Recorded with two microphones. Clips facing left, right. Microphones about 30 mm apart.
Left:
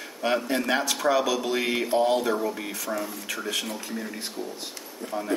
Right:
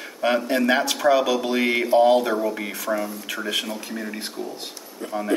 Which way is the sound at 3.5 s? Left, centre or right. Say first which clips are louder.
Right 4 dB; right.